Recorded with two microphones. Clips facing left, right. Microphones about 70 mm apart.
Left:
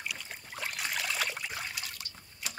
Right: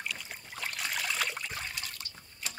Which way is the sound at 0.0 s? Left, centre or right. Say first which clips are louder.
Right 1 dB; centre.